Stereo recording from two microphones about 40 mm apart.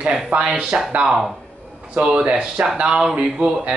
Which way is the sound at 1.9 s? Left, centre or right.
Right.